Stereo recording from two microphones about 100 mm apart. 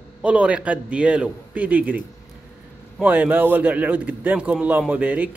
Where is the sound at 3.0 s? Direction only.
15° right (ahead or behind).